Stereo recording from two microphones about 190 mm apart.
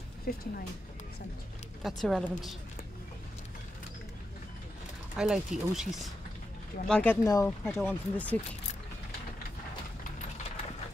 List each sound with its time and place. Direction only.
0.3 s speech: 45° left (ahead or behind)
1.8 s speech: centre (ahead or behind)
5.1 s speech: 5° right (ahead or behind)